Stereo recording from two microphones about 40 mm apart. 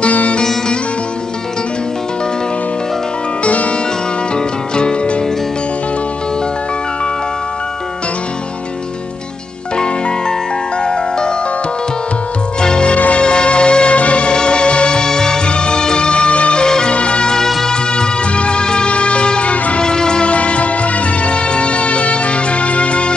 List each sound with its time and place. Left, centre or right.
0.0 s music: left
3.4 s music: left
4.7 s music: left
10.9 s music: centre
12.6 s music: left
12.9 s music: left
13.2 s music: left
14.3 s music: left
16.6 s music: centre; by 19.8 s left
19.8 s music: centre